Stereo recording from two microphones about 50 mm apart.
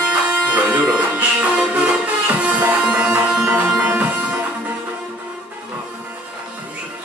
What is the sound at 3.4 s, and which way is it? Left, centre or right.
Music, right.